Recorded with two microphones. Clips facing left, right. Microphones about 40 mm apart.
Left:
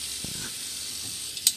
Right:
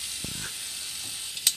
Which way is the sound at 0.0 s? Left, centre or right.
Centre.